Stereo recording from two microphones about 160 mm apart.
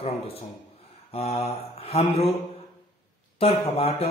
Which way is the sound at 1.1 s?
40° left (ahead or behind).